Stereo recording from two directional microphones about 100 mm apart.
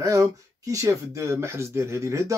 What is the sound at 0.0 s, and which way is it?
Speech, 35° right (ahead or behind).